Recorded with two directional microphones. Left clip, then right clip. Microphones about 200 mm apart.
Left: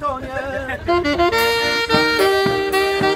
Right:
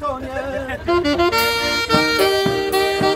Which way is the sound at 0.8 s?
60° right (ahead or behind).